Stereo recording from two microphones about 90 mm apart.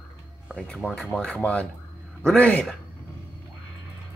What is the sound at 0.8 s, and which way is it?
Speech, 15° left (ahead or behind).